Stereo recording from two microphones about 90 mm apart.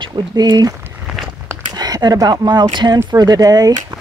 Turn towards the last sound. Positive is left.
turn(degrees=-45)  # may be behind; listen again after turning